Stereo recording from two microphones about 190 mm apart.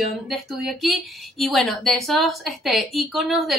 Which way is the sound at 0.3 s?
Centre (ahead or behind).